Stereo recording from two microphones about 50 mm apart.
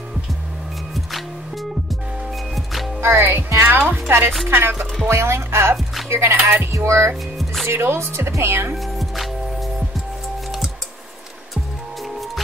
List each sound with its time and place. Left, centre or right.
0.9 s music: centre
3.0 s music: right
3.6 s speech: right
4.5 s speech: right
5.0 s speech: right
6.7 s speech: right
7.6 s speech: right
8.7 s music: centre